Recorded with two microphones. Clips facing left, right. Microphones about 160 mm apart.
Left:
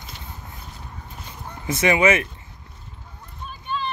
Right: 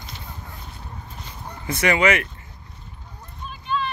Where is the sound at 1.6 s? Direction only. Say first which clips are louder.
Left 1 dB; 20° left (ahead or behind).